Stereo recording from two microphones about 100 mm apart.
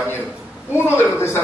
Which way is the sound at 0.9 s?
25° left (ahead or behind).